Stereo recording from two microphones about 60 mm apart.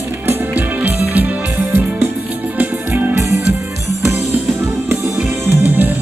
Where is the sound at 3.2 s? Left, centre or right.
Right.